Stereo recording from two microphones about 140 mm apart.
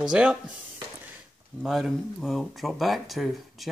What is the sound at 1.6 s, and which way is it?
Speech, centre (ahead or behind).